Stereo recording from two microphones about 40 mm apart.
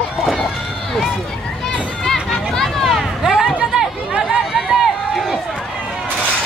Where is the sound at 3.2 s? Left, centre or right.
Centre.